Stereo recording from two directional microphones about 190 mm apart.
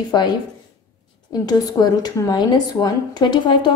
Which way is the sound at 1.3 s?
20° left (ahead or behind).